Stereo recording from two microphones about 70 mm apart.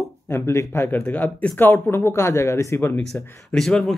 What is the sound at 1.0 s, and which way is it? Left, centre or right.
Speech, left.